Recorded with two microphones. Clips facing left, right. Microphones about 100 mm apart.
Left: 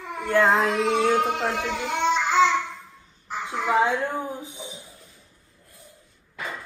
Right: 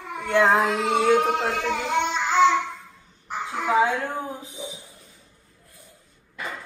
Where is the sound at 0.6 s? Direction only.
Centre (ahead or behind).